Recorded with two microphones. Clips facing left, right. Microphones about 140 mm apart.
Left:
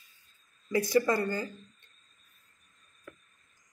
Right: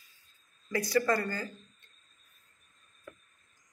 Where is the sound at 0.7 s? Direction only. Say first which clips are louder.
Left 2 dB; 15° left (ahead or behind).